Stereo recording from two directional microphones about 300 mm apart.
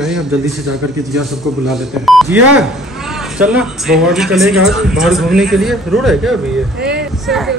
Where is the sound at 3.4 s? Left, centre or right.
Centre.